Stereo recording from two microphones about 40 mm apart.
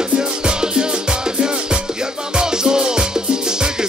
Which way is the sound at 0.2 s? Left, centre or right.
Centre.